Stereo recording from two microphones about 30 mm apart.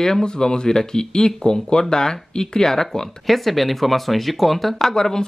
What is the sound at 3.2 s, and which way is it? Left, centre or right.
Speech, centre.